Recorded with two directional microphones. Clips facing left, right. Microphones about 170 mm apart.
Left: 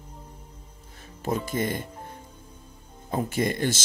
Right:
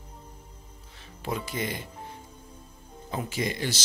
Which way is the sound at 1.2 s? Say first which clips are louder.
Left 5 dB; 45° left (ahead or behind).